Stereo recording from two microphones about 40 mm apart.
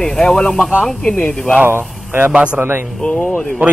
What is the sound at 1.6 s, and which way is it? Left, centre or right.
Speech, right.